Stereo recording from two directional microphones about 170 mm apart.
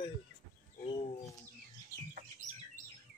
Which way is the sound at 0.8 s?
30° left (ahead or behind).